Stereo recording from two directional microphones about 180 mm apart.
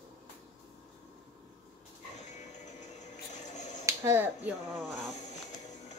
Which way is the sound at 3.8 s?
15° right (ahead or behind).